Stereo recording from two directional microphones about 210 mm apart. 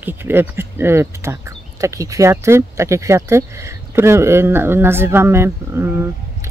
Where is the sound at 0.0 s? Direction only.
10° right (ahead or behind).